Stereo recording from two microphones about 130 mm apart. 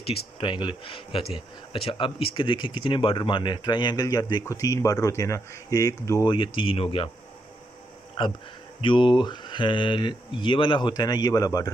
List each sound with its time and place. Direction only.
0.0 s speech: 45° left (ahead or behind); by 6.2 s 25° left (ahead or behind)
6.2 s speech: 40° left (ahead or behind)
8.2 s speech: 40° left (ahead or behind)